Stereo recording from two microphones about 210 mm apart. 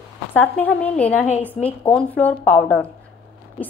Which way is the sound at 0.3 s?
10° left (ahead or behind).